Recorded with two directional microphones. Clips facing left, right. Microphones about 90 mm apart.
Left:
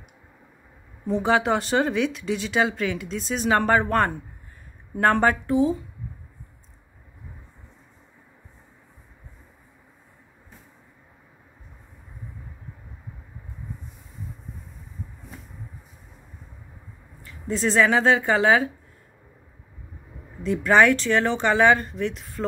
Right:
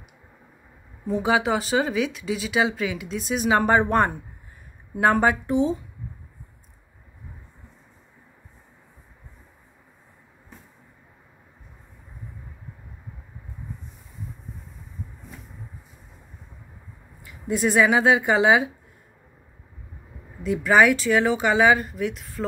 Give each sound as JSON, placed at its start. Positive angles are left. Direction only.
{"t": 1.0, "sound": "speech", "side_deg": -5}
{"t": 3.7, "sound": "a woman's voice", "side_deg": -20}
{"t": 5.5, "sound": "speech", "side_deg": -25}
{"t": 17.2, "sound": "speech", "side_deg": -15}
{"t": 20.4, "sound": "speech", "side_deg": -5}